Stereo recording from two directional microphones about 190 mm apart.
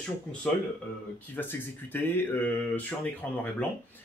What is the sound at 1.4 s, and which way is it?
Speech, 10° left (ahead or behind).